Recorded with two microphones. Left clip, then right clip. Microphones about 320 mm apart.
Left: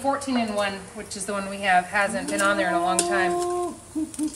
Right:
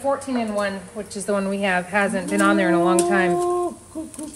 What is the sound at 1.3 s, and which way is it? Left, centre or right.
Speech, centre.